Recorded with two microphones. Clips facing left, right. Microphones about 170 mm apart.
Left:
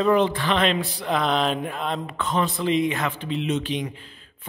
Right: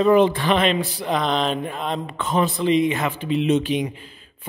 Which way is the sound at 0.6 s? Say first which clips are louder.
Right 2 dB; centre (ahead or behind).